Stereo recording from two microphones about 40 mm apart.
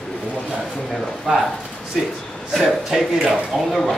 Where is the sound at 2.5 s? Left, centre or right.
Centre.